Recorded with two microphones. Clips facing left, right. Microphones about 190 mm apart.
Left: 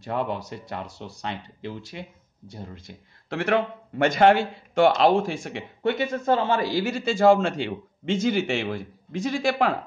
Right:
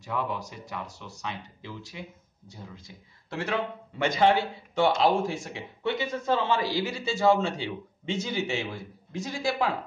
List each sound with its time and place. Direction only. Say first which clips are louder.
0.0 s a man's voice: left 4 dB; 65° left (ahead or behind)
5.4 s a man's voice: left 5 dB; 55° left (ahead or behind)
8.1 s a man's voice: left 6 dB; 90° left
9.5 s a man's voice: left 3 dB; 65° left (ahead or behind)